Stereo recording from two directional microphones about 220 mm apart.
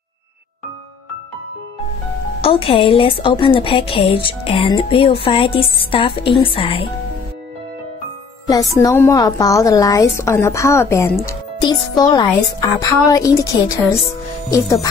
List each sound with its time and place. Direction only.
2.4 s a woman's voice: 25° left (ahead or behind)
8.7 s a woman's voice: 10° left (ahead or behind)